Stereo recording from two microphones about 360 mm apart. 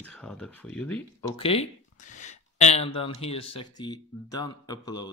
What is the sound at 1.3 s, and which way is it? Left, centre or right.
Speech, centre.